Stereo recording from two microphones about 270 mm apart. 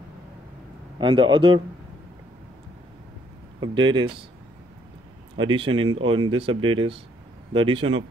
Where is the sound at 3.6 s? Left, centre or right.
Centre.